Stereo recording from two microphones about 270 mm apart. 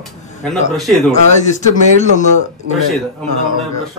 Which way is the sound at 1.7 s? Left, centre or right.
Left.